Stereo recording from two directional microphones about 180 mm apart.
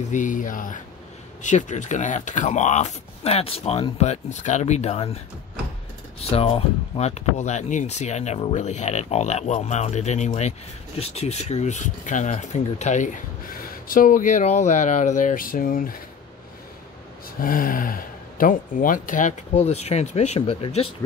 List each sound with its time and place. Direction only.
0.1 s speech: 45° left (ahead or behind)
6.3 s speech: 35° left (ahead or behind); by 16.0 s 50° left (ahead or behind)
17.4 s speech: 50° left (ahead or behind); by 20.9 s 35° left (ahead or behind)